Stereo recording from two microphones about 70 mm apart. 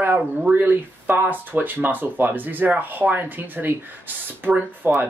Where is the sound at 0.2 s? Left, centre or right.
Centre.